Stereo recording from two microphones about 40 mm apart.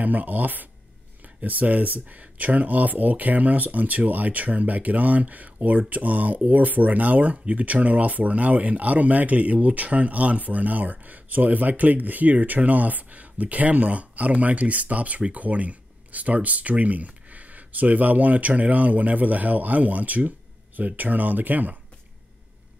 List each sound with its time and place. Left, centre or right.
0.0 s speech: right